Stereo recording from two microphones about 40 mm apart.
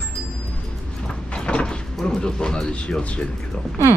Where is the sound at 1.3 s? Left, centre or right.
Left.